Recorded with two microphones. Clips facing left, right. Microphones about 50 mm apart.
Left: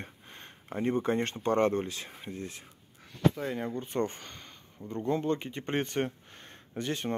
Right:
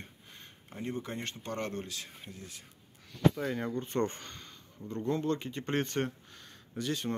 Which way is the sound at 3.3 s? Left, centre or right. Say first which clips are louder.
Even; centre.